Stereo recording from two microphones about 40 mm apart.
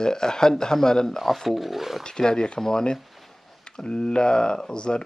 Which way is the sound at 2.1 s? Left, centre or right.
Centre.